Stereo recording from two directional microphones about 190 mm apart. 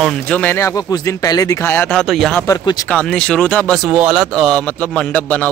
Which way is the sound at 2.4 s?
20° left (ahead or behind).